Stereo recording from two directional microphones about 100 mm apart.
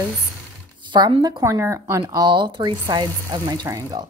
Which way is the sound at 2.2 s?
50° right (ahead or behind).